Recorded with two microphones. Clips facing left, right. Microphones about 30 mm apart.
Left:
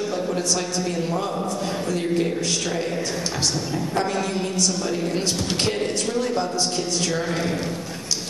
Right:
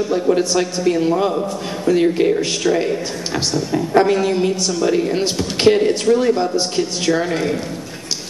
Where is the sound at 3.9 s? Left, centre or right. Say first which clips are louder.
Right 10 dB; right.